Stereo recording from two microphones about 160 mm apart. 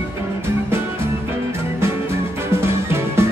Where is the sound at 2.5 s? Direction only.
15° right (ahead or behind).